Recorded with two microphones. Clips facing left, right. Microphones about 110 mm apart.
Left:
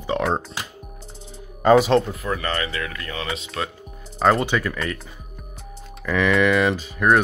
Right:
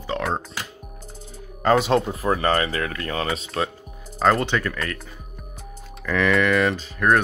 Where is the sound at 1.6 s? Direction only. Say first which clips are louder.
Left 3 dB; 5° left (ahead or behind).